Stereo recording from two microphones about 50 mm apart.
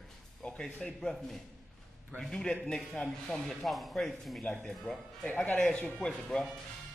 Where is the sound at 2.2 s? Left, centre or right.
Centre.